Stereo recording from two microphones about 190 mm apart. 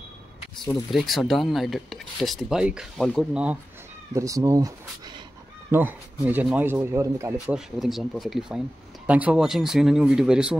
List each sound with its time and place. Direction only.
0.6 s speech: centre (ahead or behind)
4.1 s speech: 15° right (ahead or behind)
7.3 s speech: centre (ahead or behind)